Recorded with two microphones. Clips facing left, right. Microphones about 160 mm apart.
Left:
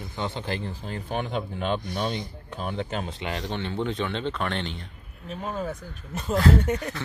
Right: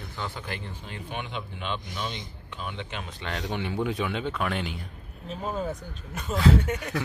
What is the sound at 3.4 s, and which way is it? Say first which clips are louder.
Speech: right 2 dB; 10° right (ahead or behind).